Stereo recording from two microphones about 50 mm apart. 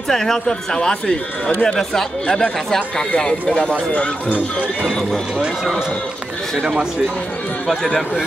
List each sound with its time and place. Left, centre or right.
0.1 s speech: centre
6.6 s speech: centre